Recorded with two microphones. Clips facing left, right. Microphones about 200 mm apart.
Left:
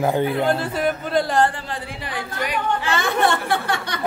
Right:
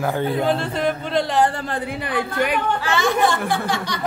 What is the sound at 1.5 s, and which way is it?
A woman's voice, 50° right (ahead or behind).